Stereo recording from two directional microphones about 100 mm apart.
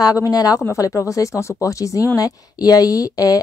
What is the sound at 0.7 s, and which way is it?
A woman's voice, 25° left (ahead or behind).